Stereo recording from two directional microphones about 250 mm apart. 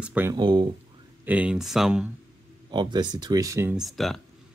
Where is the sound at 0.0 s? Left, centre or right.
Centre.